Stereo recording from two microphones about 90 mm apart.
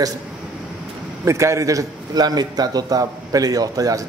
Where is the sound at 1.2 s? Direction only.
35° right (ahead or behind).